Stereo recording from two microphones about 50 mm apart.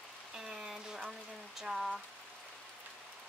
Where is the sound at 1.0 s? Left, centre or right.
Centre.